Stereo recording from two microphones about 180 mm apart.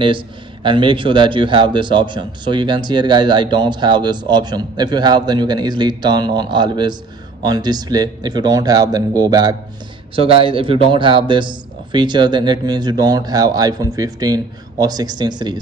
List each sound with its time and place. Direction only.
0.7 s a man's voice: 30° right (ahead or behind)